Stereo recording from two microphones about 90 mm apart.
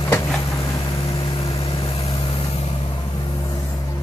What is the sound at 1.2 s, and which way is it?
Vehicle, 90° left.